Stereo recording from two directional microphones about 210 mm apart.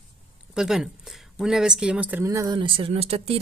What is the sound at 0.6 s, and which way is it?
Speech, centre (ahead or behind).